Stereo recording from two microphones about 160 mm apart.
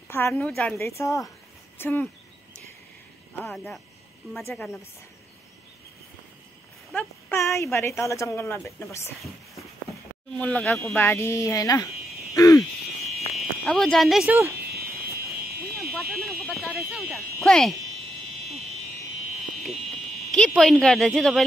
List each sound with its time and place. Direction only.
0.1 s a woman's voice: 10° left (ahead or behind)
0.7 s a woman's voice: 15° left (ahead or behind)
3.3 s a woman's voice: 10° left (ahead or behind)
6.9 s a woman's voice: 10° left (ahead or behind)
10.3 s a woman's voice: 10° left (ahead or behind)
12.4 s a sound: 20° left (ahead or behind)
13.7 s speech: 5° left (ahead or behind)
14.3 s speech: 15° right (ahead or behind)
14.6 s a sound: 70° right (ahead or behind)
15.8 s fire alarm: centre (ahead or behind)
17.0 s speech: 15° right (ahead or behind)
17.4 s speech: 5° left (ahead or behind)
19.6 s a sound: centre (ahead or behind)